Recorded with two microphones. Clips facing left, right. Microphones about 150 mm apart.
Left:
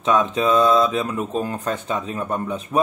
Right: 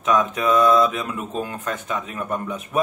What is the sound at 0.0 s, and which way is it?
Speech, 30° left (ahead or behind).